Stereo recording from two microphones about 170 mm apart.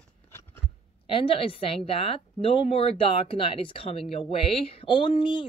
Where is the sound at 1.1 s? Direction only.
30° left (ahead or behind).